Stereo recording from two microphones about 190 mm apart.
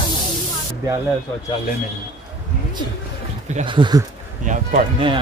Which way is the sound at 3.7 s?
25° right (ahead or behind).